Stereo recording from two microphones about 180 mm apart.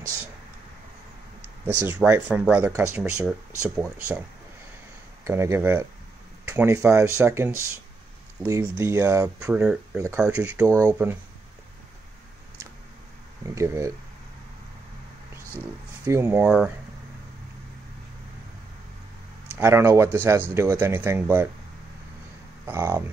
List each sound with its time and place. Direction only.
1.7 s speech: 10° right (ahead or behind)
5.2 s speech: 15° right (ahead or behind)
9.9 s speech: 15° right (ahead or behind)
13.6 s speech: 15° right (ahead or behind)
16.1 s speech: 15° right (ahead or behind)
19.5 s speech: 15° right (ahead or behind)
22.7 s speech: 15° right (ahead or behind)